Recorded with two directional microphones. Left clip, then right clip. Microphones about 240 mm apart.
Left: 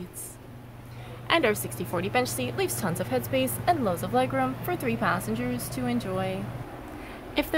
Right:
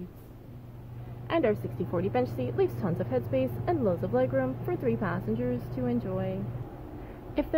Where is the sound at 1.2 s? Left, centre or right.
Centre.